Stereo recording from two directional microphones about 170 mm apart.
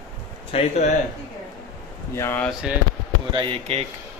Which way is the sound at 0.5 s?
40° left (ahead or behind).